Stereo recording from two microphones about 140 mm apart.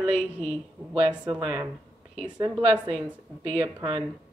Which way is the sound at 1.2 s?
30° right (ahead or behind).